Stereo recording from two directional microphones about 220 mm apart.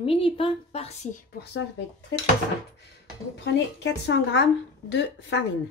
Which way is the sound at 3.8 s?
55° left (ahead or behind).